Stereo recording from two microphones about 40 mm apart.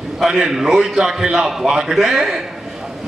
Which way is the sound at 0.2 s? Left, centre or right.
Centre.